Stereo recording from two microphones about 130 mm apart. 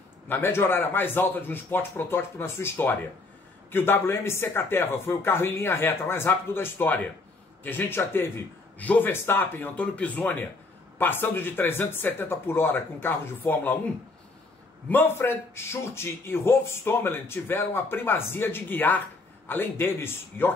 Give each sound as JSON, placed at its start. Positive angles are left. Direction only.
{"t": 0.3, "sound": "a man's voice", "side_deg": 15}